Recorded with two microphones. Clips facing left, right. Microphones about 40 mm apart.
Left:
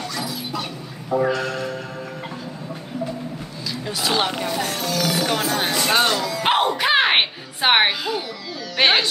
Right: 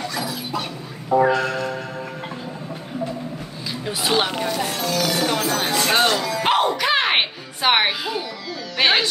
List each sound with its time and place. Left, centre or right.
0.3 s dog: right
1.1 s music: centre
3.8 s music: centre
5.6 s a sound: centre
6.4 s music: centre